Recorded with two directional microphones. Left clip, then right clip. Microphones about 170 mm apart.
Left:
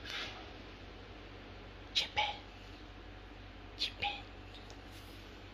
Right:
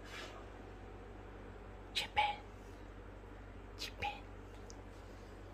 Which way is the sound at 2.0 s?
5° right (ahead or behind).